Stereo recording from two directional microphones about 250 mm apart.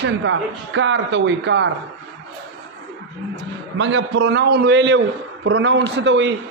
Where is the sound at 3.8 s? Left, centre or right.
Right.